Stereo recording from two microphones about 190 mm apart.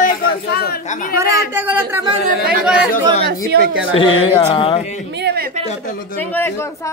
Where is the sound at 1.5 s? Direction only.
10° right (ahead or behind).